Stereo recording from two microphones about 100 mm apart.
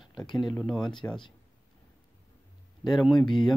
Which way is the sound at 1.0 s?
25° left (ahead or behind).